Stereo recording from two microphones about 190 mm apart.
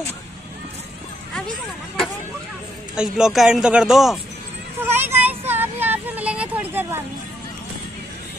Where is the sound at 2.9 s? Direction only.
5° right (ahead or behind).